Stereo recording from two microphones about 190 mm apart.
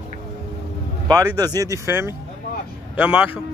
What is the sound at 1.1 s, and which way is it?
Speech, 20° right (ahead or behind).